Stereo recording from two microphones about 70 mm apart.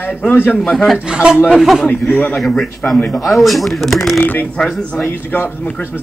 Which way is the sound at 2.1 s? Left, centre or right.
Left.